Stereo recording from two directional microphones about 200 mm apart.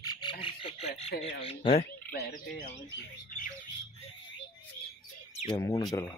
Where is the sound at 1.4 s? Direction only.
25° left (ahead or behind).